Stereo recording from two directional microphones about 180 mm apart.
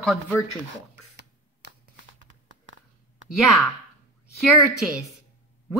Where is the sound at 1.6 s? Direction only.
70° right (ahead or behind).